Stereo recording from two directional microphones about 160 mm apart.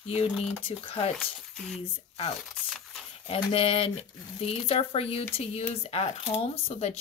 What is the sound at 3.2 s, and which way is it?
Speech, 35° left (ahead or behind).